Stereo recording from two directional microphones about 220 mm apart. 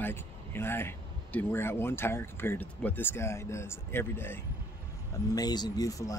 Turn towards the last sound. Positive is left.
turn(degrees=15)  # may be behind; listen again after turning